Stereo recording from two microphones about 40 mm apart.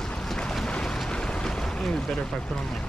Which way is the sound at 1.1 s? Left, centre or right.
Left.